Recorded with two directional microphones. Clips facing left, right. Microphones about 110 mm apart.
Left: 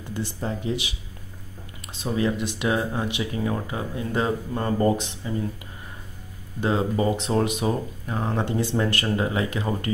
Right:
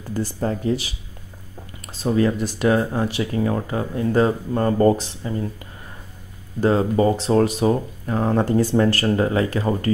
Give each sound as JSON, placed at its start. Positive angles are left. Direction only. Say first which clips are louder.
{"t": 0.1, "sound": "speech", "louder": "right 6 dB", "side_deg": -40}
{"t": 2.1, "sound": "speech", "louder": "right 4 dB", "side_deg": -40}
{"t": 6.6, "sound": "speech", "louder": "right 5 dB", "side_deg": -40}